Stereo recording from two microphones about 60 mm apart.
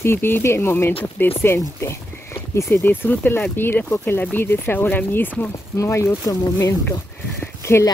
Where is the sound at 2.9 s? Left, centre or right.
Left.